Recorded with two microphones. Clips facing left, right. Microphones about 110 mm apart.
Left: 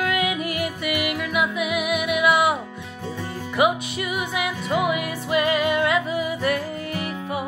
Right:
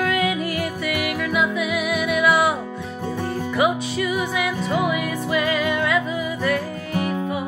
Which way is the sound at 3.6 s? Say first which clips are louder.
Even; 10° left (ahead or behind).